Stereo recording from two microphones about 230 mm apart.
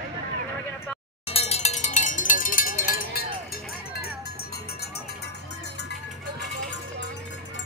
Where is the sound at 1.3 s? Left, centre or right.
Left.